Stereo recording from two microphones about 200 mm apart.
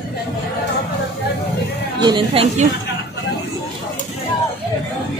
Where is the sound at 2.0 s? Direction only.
25° right (ahead or behind).